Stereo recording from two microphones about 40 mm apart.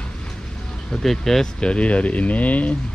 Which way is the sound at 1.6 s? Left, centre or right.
Left.